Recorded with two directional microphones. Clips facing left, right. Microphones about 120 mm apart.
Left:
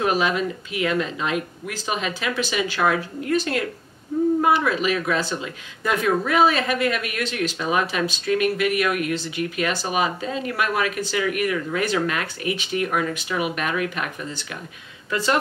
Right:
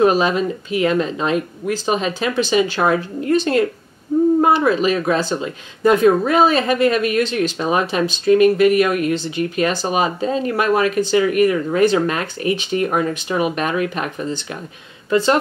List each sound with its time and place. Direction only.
0.0 s speech: 35° right (ahead or behind)